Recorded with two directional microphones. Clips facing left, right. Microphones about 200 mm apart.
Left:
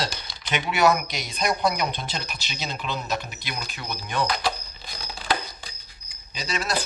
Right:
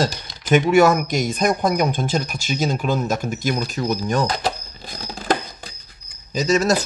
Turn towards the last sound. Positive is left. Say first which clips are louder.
# right 11 dB
turn(degrees=-45)  # may be behind; listen again after turning